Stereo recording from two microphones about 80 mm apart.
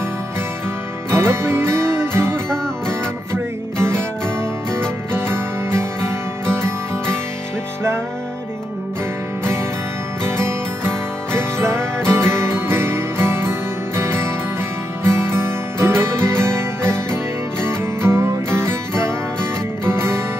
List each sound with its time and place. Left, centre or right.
1.1 s music: right
3.7 s music: right
10.2 s music: right